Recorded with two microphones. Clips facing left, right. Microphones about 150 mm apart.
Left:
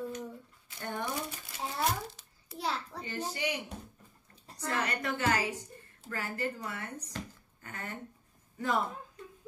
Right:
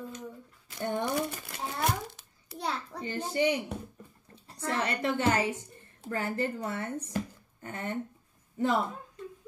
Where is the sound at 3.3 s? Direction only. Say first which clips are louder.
Right 8 dB; 30° right (ahead or behind).